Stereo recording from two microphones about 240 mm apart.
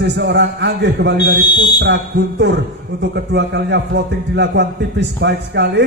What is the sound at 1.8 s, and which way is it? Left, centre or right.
Speech, right.